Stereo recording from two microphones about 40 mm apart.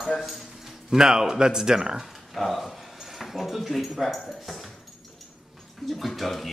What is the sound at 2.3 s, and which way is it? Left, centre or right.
Speech, centre.